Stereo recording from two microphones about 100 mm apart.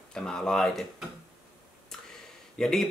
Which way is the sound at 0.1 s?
5° left (ahead or behind).